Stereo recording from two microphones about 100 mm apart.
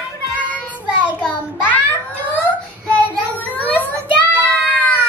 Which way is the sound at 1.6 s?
20° left (ahead or behind).